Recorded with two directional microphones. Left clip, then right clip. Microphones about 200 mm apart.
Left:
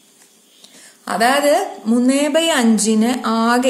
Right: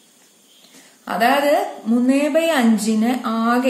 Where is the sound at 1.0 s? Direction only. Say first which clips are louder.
Left 2 dB; 30° left (ahead or behind).